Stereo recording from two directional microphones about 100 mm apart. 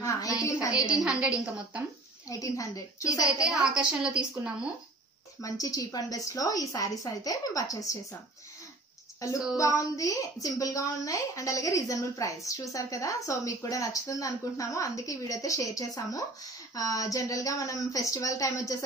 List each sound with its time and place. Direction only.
0.0 s a woman's voice: 30° left (ahead or behind)
1.0 s a woman's voice: 10° right (ahead or behind)
2.2 s a woman's voice: 35° left (ahead or behind)
3.3 s a woman's voice: 5° right (ahead or behind)
5.4 s a woman's voice: 35° left (ahead or behind)
9.2 s a woman's voice: 35° left (ahead or behind)